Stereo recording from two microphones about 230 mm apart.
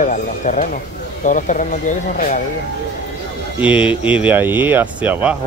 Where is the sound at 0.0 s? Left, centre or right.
Left.